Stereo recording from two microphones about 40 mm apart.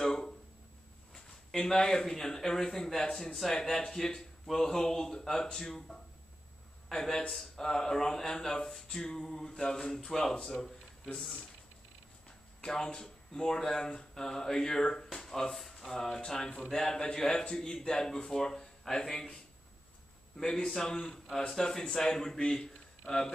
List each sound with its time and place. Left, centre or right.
0.0 s a sound: centre
1.5 s speech: centre
12.6 s speech: centre
15.1 s a sound: centre
15.5 s speech: centre
16.3 s speech: left
16.6 s speech: centre